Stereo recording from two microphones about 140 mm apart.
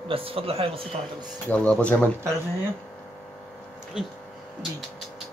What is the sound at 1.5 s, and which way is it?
Speech, 10° left (ahead or behind).